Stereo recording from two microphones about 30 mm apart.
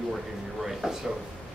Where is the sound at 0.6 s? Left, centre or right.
Centre.